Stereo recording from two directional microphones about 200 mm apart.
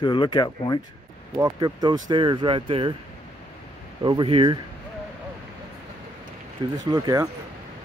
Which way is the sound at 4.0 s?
25° right (ahead or behind).